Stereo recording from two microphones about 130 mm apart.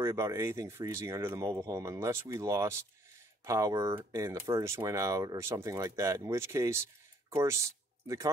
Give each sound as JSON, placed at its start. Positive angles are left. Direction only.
{"t": 0.0, "sound": "speech", "side_deg": -20}